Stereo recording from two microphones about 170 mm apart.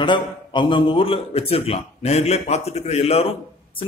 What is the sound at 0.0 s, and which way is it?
A man's voice, 30° left (ahead or behind).